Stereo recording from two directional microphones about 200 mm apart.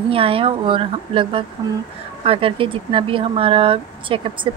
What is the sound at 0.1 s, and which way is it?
A woman's voice, 25° right (ahead or behind).